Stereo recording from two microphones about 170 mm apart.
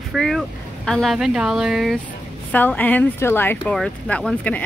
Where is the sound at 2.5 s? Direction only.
10° left (ahead or behind).